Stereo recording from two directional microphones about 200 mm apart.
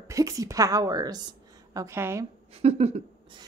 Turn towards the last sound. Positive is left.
turn(degrees=-30)  # may be behind; listen again after turning